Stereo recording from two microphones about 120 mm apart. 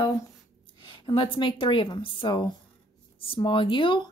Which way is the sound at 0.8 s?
45° left (ahead or behind).